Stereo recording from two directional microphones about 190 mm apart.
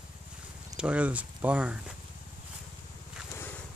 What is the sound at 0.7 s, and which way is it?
Speech, 5° right (ahead or behind).